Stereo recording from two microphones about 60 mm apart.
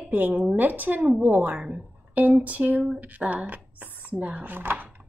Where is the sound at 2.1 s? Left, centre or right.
Right.